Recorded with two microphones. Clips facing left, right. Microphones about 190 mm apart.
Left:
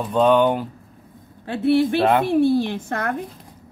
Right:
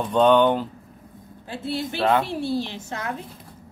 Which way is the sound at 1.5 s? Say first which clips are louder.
Left 11 dB; 65° left (ahead or behind).